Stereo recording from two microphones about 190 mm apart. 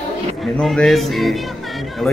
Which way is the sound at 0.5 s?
5° left (ahead or behind).